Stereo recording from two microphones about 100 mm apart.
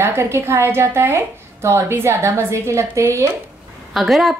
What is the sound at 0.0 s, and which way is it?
A woman's voice, 25° right (ahead or behind).